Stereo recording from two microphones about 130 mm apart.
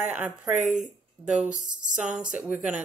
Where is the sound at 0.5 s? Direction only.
70° right (ahead or behind).